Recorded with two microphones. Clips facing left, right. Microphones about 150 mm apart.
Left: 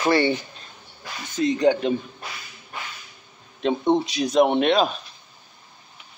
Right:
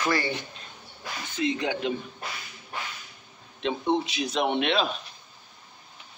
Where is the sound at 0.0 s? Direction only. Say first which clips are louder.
Left 7 dB; 30° left (ahead or behind).